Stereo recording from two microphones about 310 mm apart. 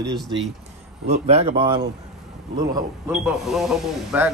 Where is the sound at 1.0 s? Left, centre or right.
Right.